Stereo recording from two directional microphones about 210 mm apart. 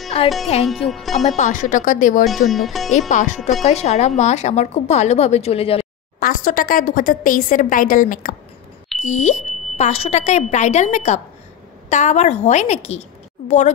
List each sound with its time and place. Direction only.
0.2 s speech: 30° left (ahead or behind)
0.8 s speech: centre (ahead or behind)
1.2 s a woman's voice: 35° left (ahead or behind)
2.2 s speech: centre (ahead or behind)
3.1 s a woman's voice: 35° left (ahead or behind)
6.1 s a woman's voice: 40° left (ahead or behind)